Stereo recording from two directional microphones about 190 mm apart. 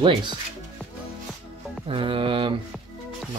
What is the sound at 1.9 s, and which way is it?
Mantra, 30° right (ahead or behind).